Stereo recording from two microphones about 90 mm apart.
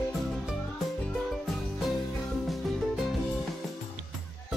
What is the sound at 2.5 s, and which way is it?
Music, centre (ahead or behind).